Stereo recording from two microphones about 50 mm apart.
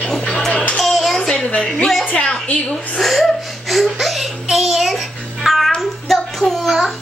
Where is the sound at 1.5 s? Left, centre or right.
Left.